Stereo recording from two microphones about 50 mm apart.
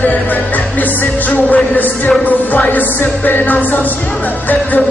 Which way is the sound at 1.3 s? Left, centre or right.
Left.